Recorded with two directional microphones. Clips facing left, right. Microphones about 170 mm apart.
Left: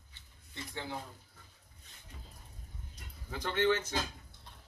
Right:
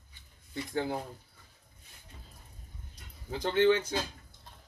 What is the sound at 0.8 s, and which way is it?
Speech, 40° right (ahead or behind).